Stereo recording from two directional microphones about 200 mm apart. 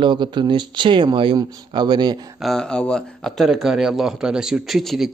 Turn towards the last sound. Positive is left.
turn(degrees=0)  # may be behind; listen again after turning